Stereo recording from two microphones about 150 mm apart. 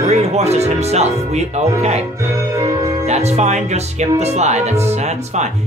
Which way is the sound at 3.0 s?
45° right (ahead or behind).